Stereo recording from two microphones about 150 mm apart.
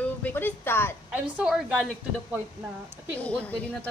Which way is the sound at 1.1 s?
5° right (ahead or behind).